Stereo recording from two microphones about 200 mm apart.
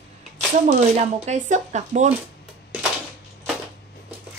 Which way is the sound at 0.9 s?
35° right (ahead or behind).